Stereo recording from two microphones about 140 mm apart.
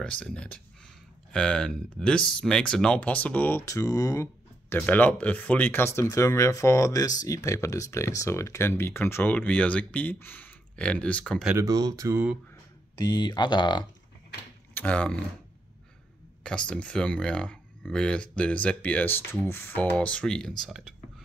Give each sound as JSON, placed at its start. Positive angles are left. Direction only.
{"t": 0.0, "sound": "speech", "side_deg": 5}
{"t": 11.5, "sound": "speech", "side_deg": -25}
{"t": 12.9, "sound": "speech", "side_deg": 30}
{"t": 14.7, "sound": "speech", "side_deg": 10}
{"t": 16.4, "sound": "speech", "side_deg": 5}